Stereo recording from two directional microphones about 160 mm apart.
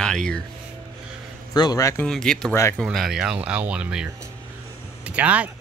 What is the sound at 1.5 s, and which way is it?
Speech, 25° left (ahead or behind).